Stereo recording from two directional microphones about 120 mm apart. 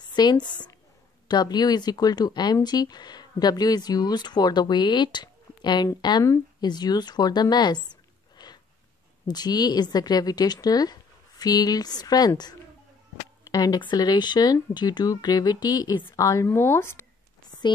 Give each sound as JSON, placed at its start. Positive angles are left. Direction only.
{"t": 0.1, "sound": "speech", "side_deg": 35}
{"t": 16.0, "sound": "speech", "side_deg": 20}